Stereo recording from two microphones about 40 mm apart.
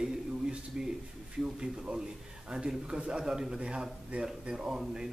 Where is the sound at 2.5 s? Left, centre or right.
Centre.